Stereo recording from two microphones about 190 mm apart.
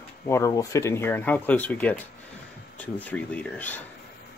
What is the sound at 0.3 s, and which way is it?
Speech, 15° left (ahead or behind).